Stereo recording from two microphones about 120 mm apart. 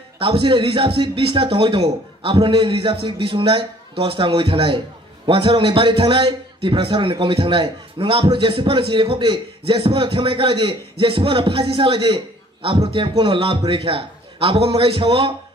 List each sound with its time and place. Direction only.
0.2 s a man's voice: 45° right (ahead or behind)